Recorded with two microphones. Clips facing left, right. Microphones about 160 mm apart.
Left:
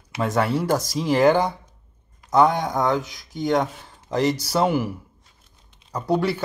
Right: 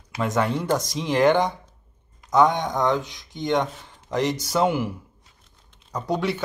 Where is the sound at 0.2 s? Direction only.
5° left (ahead or behind).